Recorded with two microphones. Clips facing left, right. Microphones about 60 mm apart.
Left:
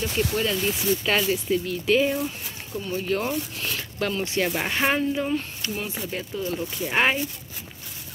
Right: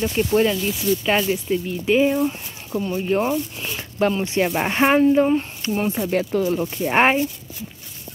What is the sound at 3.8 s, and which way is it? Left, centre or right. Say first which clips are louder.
Speech: right 8 dB; right.